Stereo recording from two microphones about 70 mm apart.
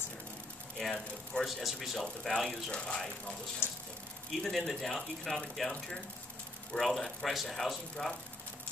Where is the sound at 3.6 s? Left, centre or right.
Left.